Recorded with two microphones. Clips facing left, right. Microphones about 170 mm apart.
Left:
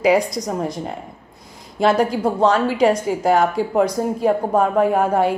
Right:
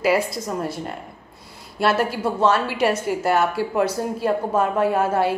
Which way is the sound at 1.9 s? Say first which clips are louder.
Left 4 dB; 15° left (ahead or behind).